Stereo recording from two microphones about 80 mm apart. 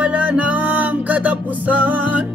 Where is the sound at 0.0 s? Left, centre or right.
Centre.